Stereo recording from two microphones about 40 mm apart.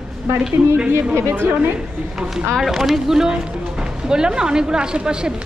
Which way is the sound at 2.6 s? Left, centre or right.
Centre.